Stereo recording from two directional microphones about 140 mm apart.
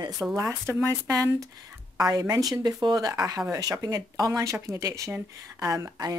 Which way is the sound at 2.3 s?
25° right (ahead or behind).